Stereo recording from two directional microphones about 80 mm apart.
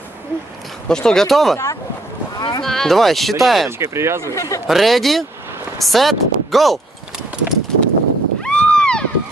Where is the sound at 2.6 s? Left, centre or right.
Centre.